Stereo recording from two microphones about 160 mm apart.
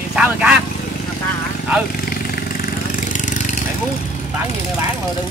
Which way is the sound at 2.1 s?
70° left (ahead or behind).